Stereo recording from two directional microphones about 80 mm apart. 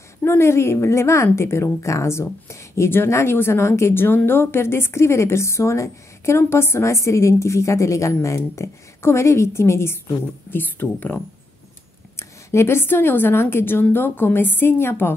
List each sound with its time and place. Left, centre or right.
0.2 s a woman's voice: left
12.2 s a woman's voice: left